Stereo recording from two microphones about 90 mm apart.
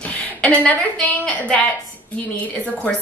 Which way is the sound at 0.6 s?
15° left (ahead or behind).